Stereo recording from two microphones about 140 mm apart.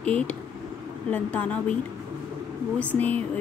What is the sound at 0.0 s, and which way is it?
A woman's voice, 10° left (ahead or behind).